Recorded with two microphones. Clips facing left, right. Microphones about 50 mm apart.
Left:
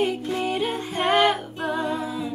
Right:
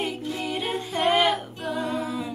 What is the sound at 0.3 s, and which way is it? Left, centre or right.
Music, left.